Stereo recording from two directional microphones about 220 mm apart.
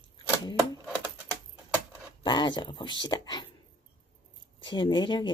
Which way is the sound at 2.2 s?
20° left (ahead or behind).